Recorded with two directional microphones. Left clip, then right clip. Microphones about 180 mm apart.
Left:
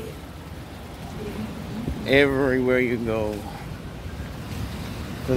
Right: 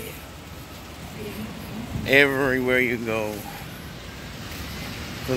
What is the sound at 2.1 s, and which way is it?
Speech, 5° left (ahead or behind).